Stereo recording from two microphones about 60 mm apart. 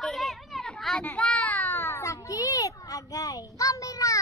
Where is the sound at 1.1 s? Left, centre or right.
Left.